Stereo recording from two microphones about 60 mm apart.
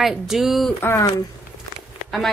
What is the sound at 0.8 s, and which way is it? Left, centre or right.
Speech, left.